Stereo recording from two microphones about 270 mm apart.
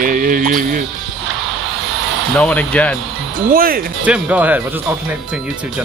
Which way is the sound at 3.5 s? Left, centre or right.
Right.